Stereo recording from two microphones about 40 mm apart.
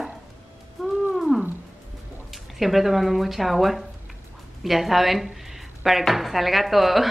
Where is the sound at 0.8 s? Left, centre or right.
Centre.